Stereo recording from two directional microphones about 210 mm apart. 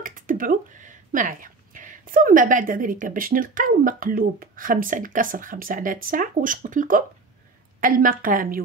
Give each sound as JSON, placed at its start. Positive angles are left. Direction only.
{"t": 0.0, "sound": "speech", "side_deg": -40}